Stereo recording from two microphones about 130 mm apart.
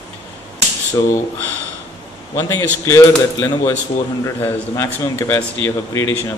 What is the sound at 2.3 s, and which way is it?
Speech, 20° left (ahead or behind).